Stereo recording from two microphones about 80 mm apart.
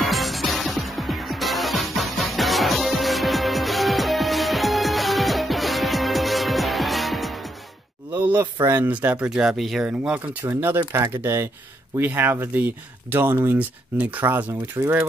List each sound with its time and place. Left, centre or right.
0.0 s music: centre
8.1 s a sound: right
8.6 s speech: right
9.3 s speech: centre
9.8 s speech: centre
10.4 s speech: right
10.9 s speech: right